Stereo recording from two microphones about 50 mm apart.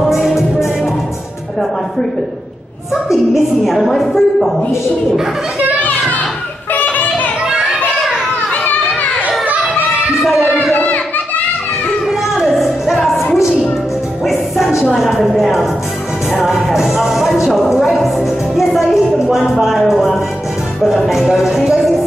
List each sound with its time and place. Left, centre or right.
0.0 s music: centre
2.9 s a woman's voice: centre
5.8 s children playing: left
6.7 s a sound: left
7.4 s children playing: centre
10.5 s a sound: left
12.1 s music: centre
14.2 s music: centre
15.0 s a sound: centre
16.3 s music: centre